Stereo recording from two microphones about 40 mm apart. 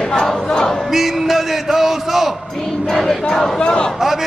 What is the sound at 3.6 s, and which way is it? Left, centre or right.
Speech, left.